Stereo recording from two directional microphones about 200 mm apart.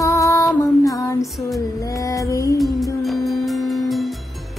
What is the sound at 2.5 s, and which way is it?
Music, centre (ahead or behind).